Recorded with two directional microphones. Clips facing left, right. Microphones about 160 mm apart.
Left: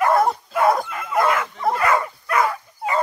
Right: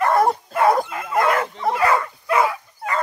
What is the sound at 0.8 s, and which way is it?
Bow-wow, 25° right (ahead or behind).